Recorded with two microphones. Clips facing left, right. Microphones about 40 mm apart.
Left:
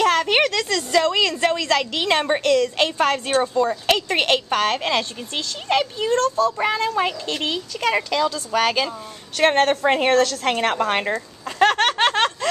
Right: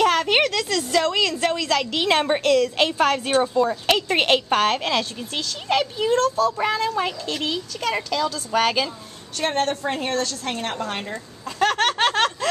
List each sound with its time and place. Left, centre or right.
0.0 s a woman's voice: centre
8.5 s a woman's voice: centre
9.4 s a woman's voice: left
10.8 s a woman's voice: left
11.4 s a sound: centre